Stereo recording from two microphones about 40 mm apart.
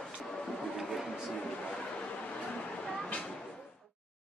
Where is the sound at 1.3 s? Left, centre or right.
Left.